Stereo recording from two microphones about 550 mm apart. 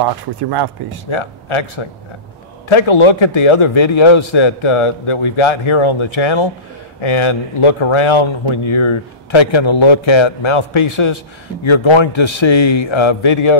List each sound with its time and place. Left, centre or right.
0.0 s speech: right
1.1 s speech: left